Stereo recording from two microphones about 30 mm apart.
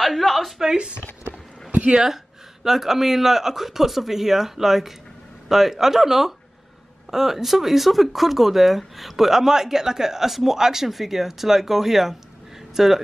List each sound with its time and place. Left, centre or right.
0.0 s a sound: centre
0.7 s speech: right
2.6 s speech: centre